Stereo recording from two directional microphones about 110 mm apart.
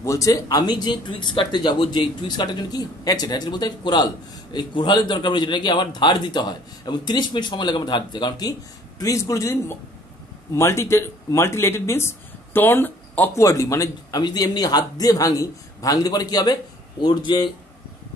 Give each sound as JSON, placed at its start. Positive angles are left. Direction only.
{"t": 0.0, "sound": "speech", "side_deg": 30}